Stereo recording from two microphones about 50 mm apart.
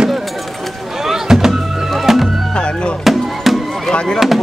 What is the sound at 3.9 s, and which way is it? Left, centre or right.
Fireworks, centre.